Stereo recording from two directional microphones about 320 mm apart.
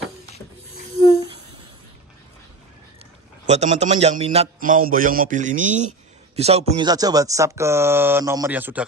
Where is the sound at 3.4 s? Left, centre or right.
Right.